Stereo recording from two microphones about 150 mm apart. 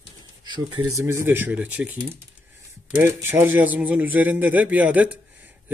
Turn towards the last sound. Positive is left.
turn(degrees=-10)  # may be behind; listen again after turning